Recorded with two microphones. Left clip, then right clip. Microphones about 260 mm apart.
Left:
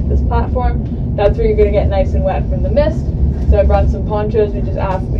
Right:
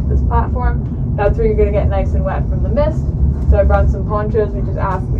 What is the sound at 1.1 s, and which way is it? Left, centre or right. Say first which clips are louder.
Speech: left 2 dB; left.